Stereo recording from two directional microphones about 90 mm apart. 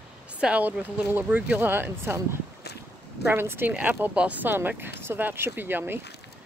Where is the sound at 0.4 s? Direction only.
15° right (ahead or behind).